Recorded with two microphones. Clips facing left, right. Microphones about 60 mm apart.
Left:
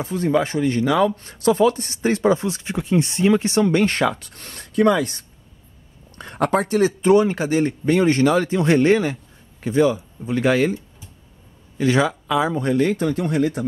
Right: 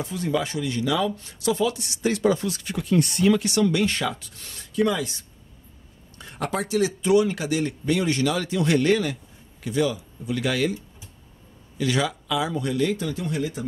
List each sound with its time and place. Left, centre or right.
0.0 s speech: left
11.8 s speech: left